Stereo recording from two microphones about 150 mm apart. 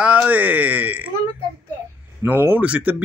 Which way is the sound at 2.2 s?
15° right (ahead or behind).